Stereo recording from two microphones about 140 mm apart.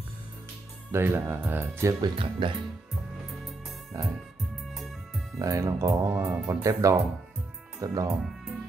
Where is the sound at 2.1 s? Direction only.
40° right (ahead or behind).